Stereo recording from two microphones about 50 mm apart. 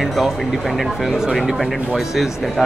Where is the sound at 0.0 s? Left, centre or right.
Centre.